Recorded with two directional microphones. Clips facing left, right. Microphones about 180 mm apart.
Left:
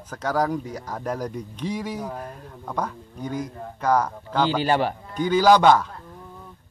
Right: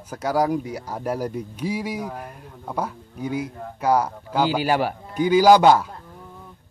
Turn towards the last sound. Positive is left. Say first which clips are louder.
# right 2 dB
turn(degrees=-10)  # may be behind; listen again after turning